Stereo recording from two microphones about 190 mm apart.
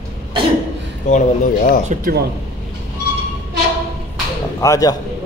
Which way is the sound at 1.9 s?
50° right (ahead or behind).